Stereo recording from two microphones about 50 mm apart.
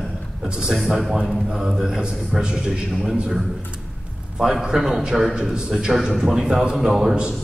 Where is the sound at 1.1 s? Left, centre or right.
Centre.